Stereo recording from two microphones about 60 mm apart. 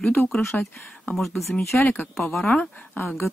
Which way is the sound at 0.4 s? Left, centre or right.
Left.